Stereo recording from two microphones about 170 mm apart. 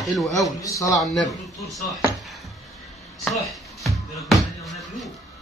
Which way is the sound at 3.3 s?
Centre (ahead or behind).